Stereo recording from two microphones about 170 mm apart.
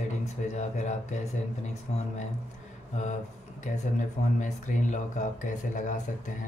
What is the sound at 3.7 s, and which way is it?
Speech, 45° left (ahead or behind).